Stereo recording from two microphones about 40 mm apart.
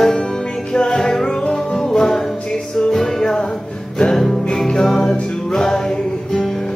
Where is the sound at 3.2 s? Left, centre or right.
Centre.